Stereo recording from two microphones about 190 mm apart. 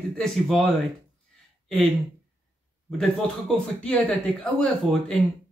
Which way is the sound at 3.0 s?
5° left (ahead or behind).